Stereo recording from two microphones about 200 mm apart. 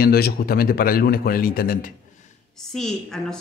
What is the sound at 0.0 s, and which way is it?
A man's voice, 50° left (ahead or behind).